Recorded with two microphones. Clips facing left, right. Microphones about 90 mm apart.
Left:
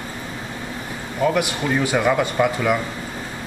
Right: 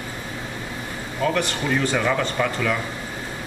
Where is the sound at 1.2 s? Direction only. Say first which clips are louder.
Left 3 dB; 10° left (ahead or behind).